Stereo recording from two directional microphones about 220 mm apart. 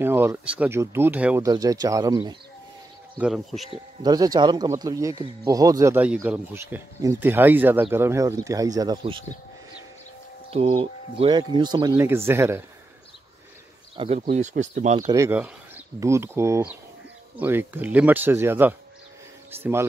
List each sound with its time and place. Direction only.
0.0 s speech: 10° right (ahead or behind)
3.2 s speech: centre (ahead or behind)
3.6 s speech: 20° right (ahead or behind)
10.5 s speech: 25° right (ahead or behind); by 12.6 s 10° right (ahead or behind)
13.9 s speech: 30° right (ahead or behind)
15.0 s speech: 10° right (ahead or behind)